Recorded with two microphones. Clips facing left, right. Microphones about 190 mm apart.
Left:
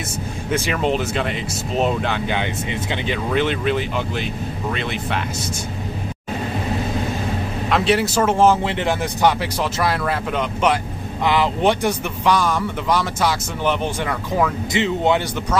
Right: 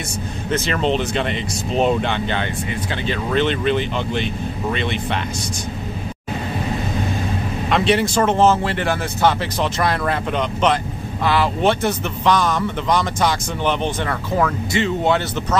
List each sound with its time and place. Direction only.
0.5 s a man's voice: 10° left (ahead or behind)
2.7 s speech: 20° left (ahead or behind)
3.3 s speech: 5° left (ahead or behind)
7.7 s a man's voice: centre (ahead or behind)